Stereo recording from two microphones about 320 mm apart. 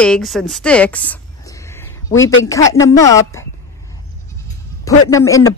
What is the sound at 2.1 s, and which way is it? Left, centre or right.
Speech, left.